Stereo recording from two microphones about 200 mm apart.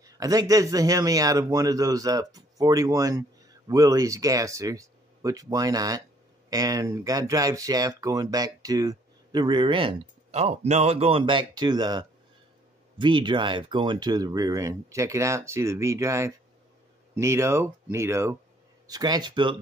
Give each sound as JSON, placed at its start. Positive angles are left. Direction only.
{"t": 0.0, "sound": "speech", "side_deg": -15}